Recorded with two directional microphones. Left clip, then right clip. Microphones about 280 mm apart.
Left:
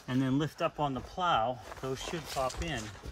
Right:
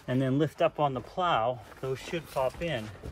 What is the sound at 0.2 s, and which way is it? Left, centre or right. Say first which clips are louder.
Speech: right 5 dB; centre.